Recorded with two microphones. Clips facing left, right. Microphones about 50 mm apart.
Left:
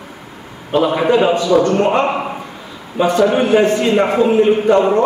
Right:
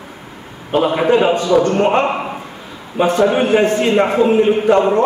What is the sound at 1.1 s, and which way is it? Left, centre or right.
A man's voice, right.